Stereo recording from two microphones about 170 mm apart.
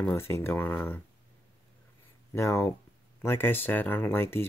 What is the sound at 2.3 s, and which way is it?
Speech, 15° left (ahead or behind).